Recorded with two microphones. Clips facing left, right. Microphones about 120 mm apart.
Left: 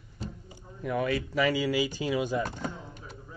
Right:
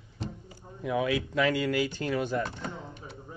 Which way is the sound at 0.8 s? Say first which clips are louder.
Right 1 dB; 5° right (ahead or behind).